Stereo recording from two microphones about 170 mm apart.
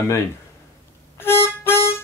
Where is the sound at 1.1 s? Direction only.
15° left (ahead or behind).